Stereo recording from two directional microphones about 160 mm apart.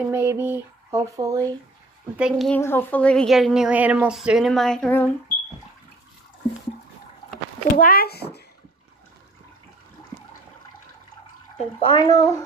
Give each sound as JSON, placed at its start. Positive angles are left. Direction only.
{"t": 0.0, "sound": "a sound", "side_deg": -15}
{"t": 2.1, "sound": "a woman's voice", "side_deg": 0}
{"t": 2.6, "sound": "a woman's voice", "side_deg": 15}
{"t": 7.7, "sound": "speech", "side_deg": 65}
{"t": 11.5, "sound": "speech", "side_deg": 35}